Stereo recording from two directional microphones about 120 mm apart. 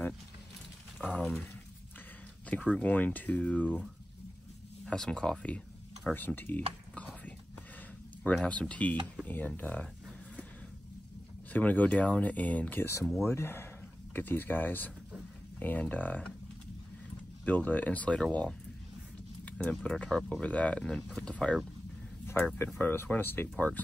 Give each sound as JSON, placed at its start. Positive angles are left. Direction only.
{"t": 0.9, "sound": "speech", "side_deg": 5}
{"t": 2.8, "sound": "speech", "side_deg": 15}
{"t": 4.8, "sound": "speech", "side_deg": 5}
{"t": 8.3, "sound": "speech", "side_deg": 10}
{"t": 11.5, "sound": "speech", "side_deg": 15}
{"t": 17.5, "sound": "speech", "side_deg": 15}
{"t": 19.8, "sound": "speech", "side_deg": 10}
{"t": 22.2, "sound": "a sound", "side_deg": 20}
{"t": 22.8, "sound": "speech", "side_deg": 15}